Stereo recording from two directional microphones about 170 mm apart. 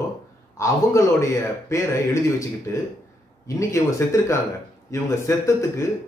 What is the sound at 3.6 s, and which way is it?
A man's voice, 15° left (ahead or behind).